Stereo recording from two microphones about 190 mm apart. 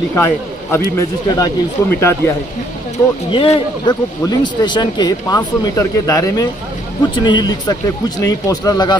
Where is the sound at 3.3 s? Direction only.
25° left (ahead or behind).